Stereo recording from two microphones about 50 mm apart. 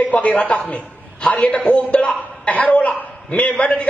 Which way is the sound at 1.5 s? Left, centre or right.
Left.